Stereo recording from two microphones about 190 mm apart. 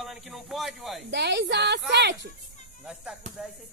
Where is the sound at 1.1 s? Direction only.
65° right (ahead or behind).